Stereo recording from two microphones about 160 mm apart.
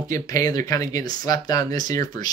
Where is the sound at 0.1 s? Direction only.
20° left (ahead or behind).